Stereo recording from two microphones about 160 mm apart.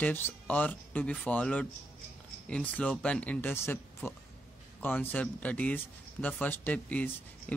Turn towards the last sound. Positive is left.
turn(degrees=10)  # may be behind; listen again after turning